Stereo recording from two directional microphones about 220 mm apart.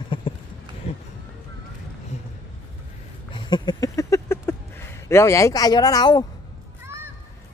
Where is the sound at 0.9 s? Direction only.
30° left (ahead or behind).